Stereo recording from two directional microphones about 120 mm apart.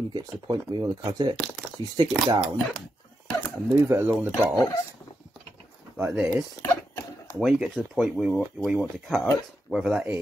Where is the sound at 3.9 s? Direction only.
20° right (ahead or behind).